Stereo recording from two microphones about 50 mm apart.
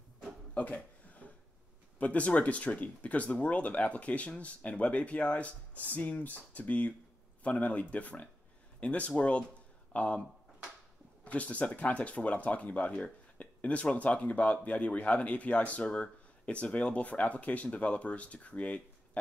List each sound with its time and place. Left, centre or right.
0.6 s a sound: left
2.0 s speech: left
11.2 s speech: left